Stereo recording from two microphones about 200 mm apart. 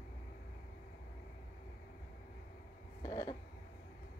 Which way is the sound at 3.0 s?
20° left (ahead or behind).